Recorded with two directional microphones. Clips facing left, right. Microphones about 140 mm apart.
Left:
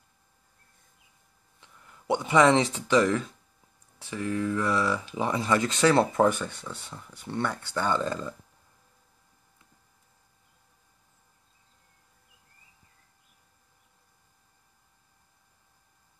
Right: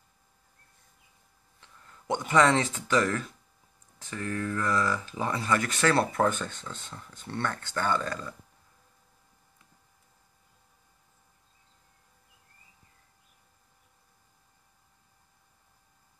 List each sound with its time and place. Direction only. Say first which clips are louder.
1.6 s speech: even; 15° left (ahead or behind)